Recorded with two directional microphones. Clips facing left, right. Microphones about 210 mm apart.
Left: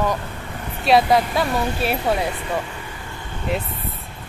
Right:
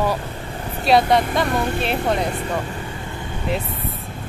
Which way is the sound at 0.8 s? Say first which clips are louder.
Even; centre (ahead or behind).